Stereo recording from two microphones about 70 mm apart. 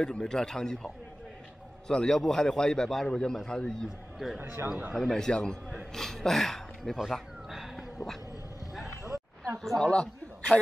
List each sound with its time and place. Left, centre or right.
0.0 s a man's voice: centre
4.4 s a man's voice: right
4.9 s a man's voice: centre
7.0 s cat: centre
9.0 s a sound: right
9.6 s a man's voice: centre